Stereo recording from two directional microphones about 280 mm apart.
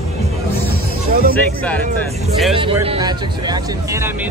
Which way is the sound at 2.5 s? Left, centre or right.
Centre.